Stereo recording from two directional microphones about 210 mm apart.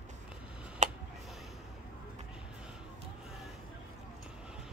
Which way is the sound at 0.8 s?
35° right (ahead or behind).